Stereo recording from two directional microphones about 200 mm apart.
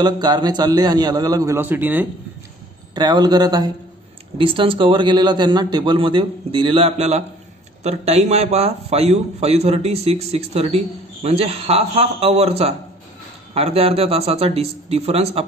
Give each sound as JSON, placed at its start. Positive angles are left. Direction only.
{"t": 0.0, "sound": "a man's voice", "side_deg": -20}
{"t": 2.9, "sound": "a man's voice", "side_deg": -20}